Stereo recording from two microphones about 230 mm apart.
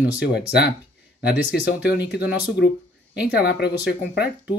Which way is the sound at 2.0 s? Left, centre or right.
Left.